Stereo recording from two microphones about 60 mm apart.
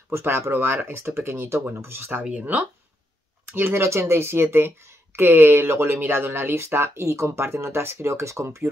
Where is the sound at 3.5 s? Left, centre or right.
Right.